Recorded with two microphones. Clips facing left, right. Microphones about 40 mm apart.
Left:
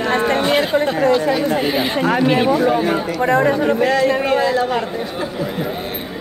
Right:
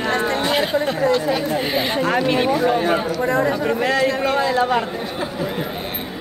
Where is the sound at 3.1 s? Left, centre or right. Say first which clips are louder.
Left 4 dB; left.